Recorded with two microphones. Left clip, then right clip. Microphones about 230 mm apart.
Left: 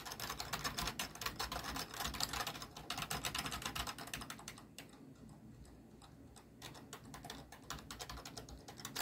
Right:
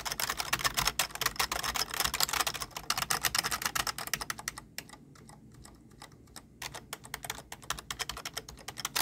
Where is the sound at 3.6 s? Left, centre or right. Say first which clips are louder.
Right 10 dB; right.